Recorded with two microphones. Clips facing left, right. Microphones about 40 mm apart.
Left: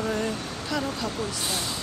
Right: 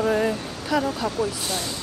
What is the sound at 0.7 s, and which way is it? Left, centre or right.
Speech, centre.